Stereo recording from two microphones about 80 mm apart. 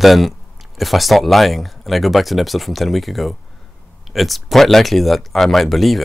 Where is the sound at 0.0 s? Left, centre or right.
Centre.